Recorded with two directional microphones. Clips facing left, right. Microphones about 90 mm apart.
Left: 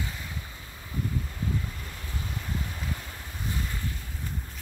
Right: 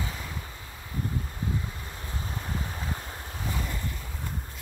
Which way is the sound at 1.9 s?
25° right (ahead or behind).